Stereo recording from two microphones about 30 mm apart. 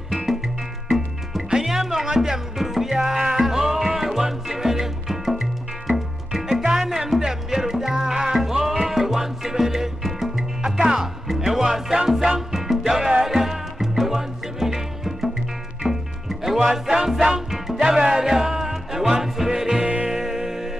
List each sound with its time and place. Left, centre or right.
1.6 s music: centre